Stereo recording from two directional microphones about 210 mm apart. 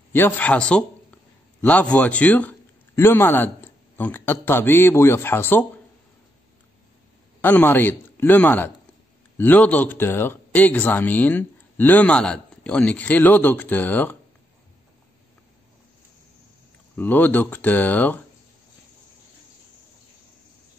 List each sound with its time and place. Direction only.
0.1 s a man's voice: 10° left (ahead or behind)
7.4 s a man's voice: 10° left (ahead or behind)
16.9 s a man's voice: 10° left (ahead or behind)